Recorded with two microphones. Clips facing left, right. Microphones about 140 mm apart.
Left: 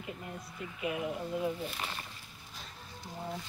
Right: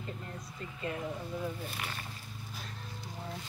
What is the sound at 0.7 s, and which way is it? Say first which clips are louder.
Speech: left 3 dB; 15° left (ahead or behind).